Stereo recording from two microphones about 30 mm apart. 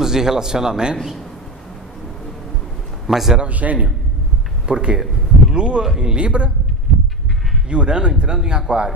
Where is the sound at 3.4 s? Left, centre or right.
Right.